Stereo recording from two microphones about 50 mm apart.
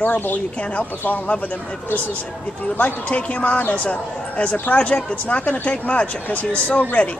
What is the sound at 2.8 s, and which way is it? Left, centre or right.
Speech, left.